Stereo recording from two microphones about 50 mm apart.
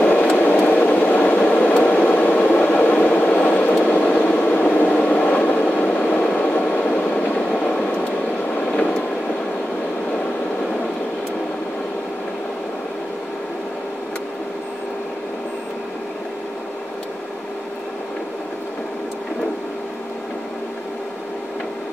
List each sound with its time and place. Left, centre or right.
0.0 s vehicle: left
0.5 s a sound: left
6.7 s vehicle: left